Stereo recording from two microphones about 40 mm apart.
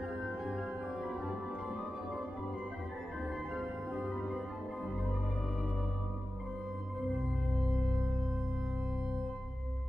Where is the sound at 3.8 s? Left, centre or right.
Centre.